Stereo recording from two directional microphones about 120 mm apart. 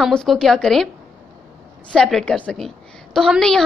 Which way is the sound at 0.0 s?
5° left (ahead or behind).